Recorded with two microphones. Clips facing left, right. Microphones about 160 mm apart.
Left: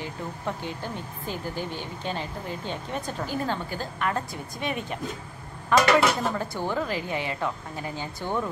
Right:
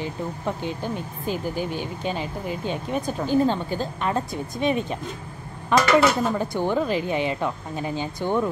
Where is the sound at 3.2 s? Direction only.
25° right (ahead or behind).